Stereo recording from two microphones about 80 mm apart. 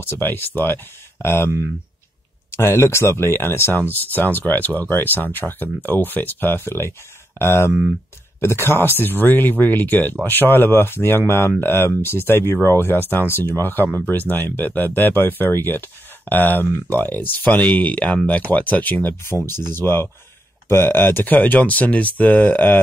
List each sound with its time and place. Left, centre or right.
0.0 s speech: left
2.5 s speech: left